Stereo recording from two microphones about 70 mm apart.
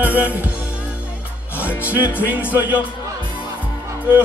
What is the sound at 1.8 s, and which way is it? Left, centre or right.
Speech, right.